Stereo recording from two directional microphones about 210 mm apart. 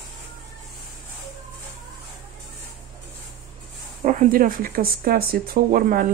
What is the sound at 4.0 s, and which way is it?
Speech, 35° right (ahead or behind).